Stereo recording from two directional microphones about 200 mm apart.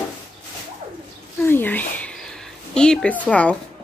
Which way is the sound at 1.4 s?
10° left (ahead or behind).